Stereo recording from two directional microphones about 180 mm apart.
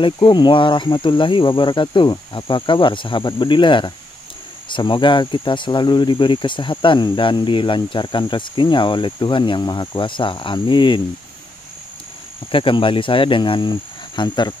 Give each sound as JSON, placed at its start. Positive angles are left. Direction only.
{"t": 0.0, "sound": "speech", "side_deg": 25}
{"t": 12.4, "sound": "speech", "side_deg": 30}